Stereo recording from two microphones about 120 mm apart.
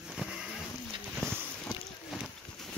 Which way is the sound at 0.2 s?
5° right (ahead or behind).